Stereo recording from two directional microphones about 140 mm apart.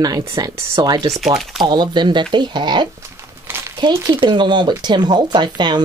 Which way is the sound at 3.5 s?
20° right (ahead or behind).